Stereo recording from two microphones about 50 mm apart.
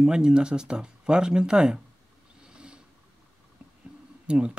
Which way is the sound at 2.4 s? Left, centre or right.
Centre.